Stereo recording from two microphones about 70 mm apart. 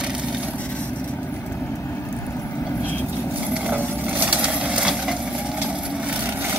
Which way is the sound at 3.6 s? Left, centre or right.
Right.